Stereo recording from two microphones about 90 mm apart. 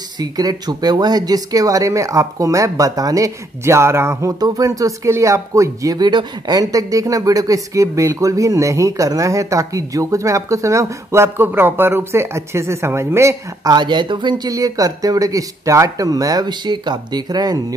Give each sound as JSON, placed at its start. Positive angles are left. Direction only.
{"t": 0.2, "sound": "speech", "side_deg": -45}
{"t": 13.7, "sound": "speech", "side_deg": -55}
{"t": 14.5, "sound": "speech", "side_deg": -40}